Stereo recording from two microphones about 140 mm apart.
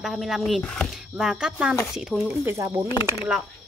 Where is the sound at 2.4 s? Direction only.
20° right (ahead or behind).